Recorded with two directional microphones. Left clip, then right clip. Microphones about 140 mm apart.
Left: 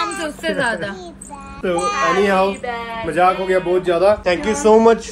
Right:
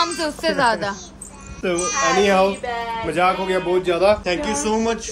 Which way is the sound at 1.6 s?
10° right (ahead or behind).